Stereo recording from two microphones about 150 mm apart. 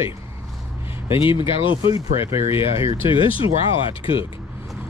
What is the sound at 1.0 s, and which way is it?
Speech, 35° left (ahead or behind).